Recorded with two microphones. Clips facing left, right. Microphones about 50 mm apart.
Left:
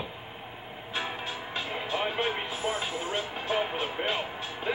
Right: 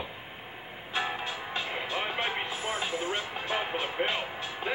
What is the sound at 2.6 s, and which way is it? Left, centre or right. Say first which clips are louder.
Vehicle: left 1 dB; right.